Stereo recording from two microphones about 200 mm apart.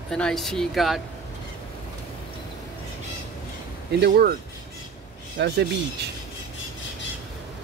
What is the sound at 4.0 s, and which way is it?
Speech, 50° right (ahead or behind).